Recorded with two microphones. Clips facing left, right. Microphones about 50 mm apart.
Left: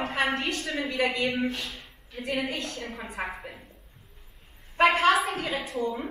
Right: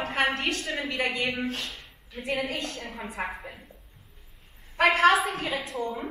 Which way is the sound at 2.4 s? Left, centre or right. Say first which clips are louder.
Left 1 dB; right.